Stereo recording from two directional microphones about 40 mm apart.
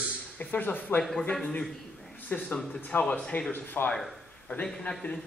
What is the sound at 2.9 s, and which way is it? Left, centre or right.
Speech, left.